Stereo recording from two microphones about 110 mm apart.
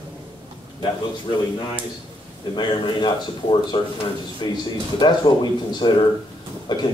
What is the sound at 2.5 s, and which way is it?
A man's voice, 45° left (ahead or behind).